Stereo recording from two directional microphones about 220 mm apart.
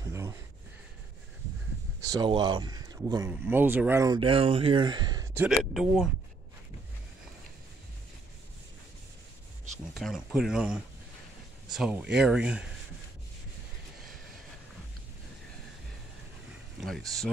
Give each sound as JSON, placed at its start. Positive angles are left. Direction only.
{"t": 2.0, "sound": "speech", "side_deg": -20}
{"t": 9.9, "sound": "speech", "side_deg": 0}
{"t": 16.8, "sound": "speech", "side_deg": 0}